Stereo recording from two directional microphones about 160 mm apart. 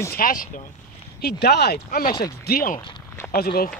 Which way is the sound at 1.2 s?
85° left.